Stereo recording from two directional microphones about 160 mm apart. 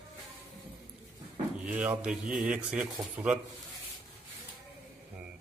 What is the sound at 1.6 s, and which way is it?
A man's voice, 10° right (ahead or behind).